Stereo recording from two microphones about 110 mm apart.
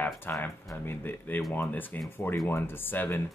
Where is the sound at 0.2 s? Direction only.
20° left (ahead or behind).